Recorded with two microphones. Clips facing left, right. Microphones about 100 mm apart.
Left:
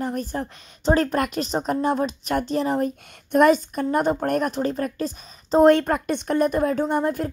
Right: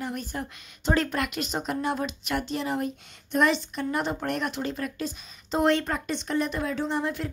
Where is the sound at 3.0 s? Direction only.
50° left (ahead or behind).